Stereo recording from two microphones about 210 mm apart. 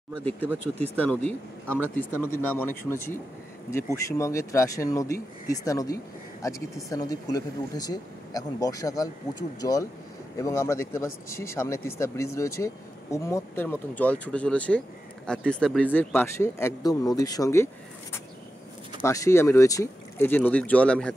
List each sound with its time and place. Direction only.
0.1 s speech: 5° left (ahead or behind)
19.0 s speech: 15° left (ahead or behind)